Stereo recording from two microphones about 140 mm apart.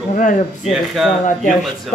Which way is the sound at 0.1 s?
65° left (ahead or behind).